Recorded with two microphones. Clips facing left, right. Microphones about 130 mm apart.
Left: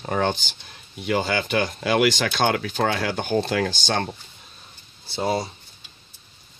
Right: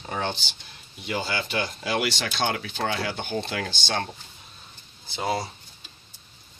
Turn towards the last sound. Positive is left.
turn(degrees=25)  # may be behind; listen again after turning